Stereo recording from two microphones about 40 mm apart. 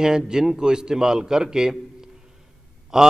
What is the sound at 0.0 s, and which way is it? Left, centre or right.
A man's voice, centre.